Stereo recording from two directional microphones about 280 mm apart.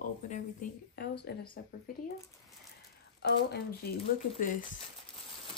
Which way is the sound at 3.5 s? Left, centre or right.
Left.